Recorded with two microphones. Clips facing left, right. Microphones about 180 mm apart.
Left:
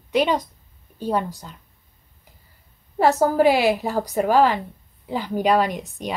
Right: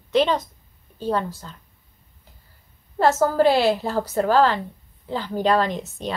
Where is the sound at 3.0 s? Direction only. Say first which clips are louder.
Left 1 dB; 15° left (ahead or behind).